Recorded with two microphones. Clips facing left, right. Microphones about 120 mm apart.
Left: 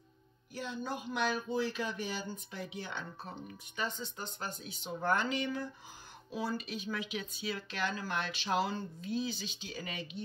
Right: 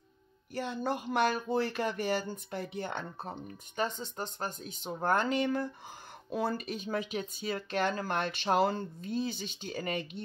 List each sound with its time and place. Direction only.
0.6 s speech: 65° right (ahead or behind)